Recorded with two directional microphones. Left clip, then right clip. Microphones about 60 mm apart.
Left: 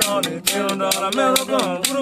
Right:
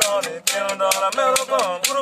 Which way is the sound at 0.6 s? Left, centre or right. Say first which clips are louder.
Right 2 dB; right.